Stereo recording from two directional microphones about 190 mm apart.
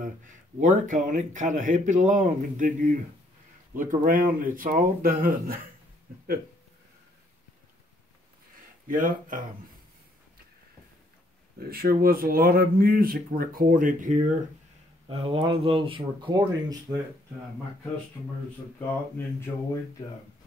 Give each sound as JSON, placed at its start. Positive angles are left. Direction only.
{"t": 0.6, "sound": "speech", "side_deg": -40}
{"t": 6.1, "sound": "a sound", "side_deg": -50}
{"t": 8.8, "sound": "speech", "side_deg": -45}
{"t": 11.7, "sound": "speech", "side_deg": -50}
{"t": 15.0, "sound": "speech", "side_deg": -30}
{"t": 19.1, "sound": "a sound", "side_deg": 15}